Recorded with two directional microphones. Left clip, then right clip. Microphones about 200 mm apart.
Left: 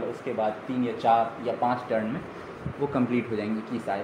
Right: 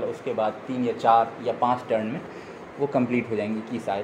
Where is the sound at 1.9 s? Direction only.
20° right (ahead or behind).